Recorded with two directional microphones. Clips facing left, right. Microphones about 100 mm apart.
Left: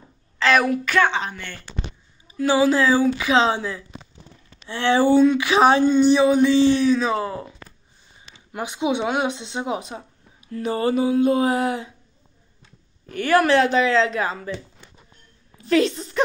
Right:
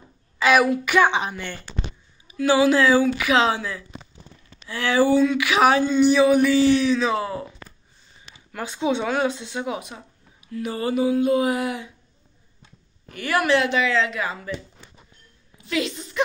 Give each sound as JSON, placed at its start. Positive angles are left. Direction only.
{"t": 0.4, "sound": "a woman's voice", "side_deg": -10}
{"t": 2.2, "sound": "a woman's voice", "side_deg": 35}
{"t": 8.5, "sound": "a woman's voice", "side_deg": 20}
{"t": 13.1, "sound": "a woman's voice", "side_deg": 35}
{"t": 15.5, "sound": "a sound", "side_deg": 40}